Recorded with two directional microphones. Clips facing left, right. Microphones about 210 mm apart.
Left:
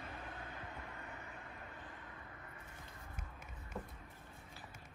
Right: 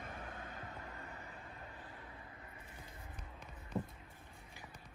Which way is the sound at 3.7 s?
20° right (ahead or behind).